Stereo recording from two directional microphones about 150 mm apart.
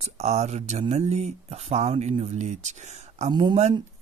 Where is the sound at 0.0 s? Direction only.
45° right (ahead or behind).